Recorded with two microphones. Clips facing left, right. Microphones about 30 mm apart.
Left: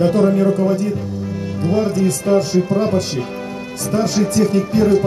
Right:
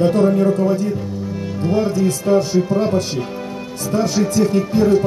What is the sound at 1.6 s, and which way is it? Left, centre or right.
Speech, centre.